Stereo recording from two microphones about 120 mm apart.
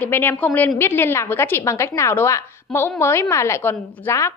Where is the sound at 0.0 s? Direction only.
20° left (ahead or behind).